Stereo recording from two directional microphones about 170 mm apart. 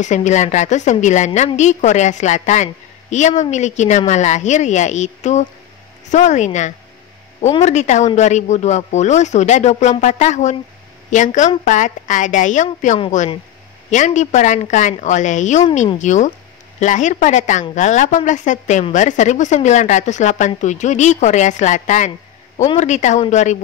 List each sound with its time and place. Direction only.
0.0 s a woman's voice: 45° left (ahead or behind)